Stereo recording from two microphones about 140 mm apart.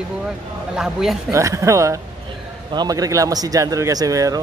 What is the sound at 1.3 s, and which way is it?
Speech, 20° right (ahead or behind).